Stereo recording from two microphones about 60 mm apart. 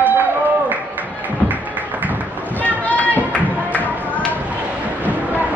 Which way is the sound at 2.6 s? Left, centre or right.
Left.